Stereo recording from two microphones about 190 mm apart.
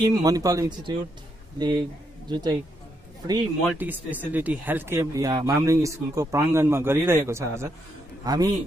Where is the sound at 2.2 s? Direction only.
20° right (ahead or behind).